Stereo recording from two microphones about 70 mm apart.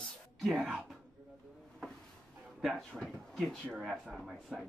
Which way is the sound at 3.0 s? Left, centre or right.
Centre.